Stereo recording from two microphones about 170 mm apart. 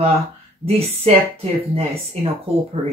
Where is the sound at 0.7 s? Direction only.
35° right (ahead or behind).